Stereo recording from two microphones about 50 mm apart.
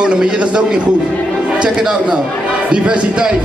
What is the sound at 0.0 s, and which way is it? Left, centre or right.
Speech, centre.